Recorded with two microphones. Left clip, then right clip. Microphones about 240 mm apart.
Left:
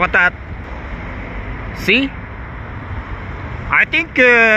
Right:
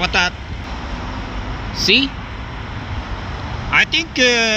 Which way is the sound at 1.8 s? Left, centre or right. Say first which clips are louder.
Even; left.